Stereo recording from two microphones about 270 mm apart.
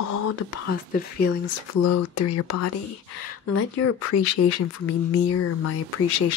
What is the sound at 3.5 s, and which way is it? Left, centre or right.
Speech, left.